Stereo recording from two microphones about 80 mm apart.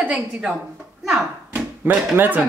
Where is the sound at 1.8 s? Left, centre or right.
Right.